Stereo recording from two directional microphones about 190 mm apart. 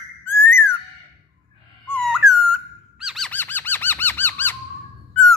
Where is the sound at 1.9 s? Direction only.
Centre (ahead or behind).